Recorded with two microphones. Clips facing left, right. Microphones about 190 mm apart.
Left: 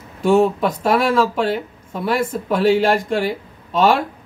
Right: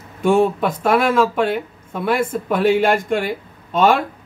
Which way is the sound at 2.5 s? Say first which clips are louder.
Even; 55° right (ahead or behind).